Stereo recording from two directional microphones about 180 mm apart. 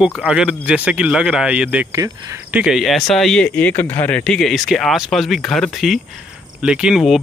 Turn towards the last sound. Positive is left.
turn(degrees=0)  # may be behind; listen again after turning